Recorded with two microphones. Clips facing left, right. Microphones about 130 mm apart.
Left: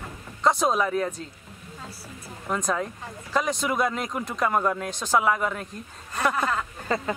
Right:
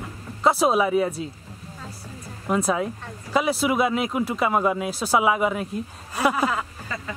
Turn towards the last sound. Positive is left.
turn(degrees=40)  # may be behind; listen again after turning